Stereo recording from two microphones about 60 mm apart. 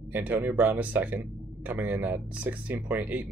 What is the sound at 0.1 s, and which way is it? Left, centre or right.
Speech, right.